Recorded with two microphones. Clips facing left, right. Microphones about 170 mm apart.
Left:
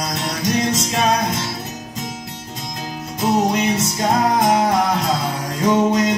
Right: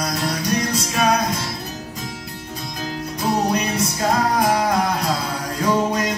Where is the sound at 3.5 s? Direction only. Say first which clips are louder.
Left 2 dB; 25° left (ahead or behind).